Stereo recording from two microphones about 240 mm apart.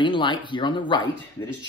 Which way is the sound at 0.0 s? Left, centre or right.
Centre.